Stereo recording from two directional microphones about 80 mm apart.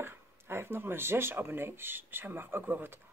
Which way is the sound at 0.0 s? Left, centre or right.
Right.